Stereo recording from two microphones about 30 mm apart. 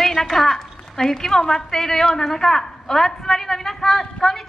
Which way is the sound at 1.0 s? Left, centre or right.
Centre.